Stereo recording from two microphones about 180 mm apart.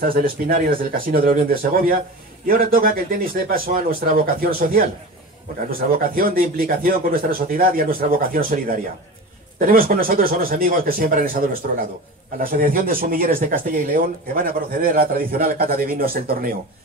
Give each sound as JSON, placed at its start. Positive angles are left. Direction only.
{"t": 0.0, "sound": "speech", "side_deg": -50}
{"t": 9.6, "sound": "a man's voice", "side_deg": -55}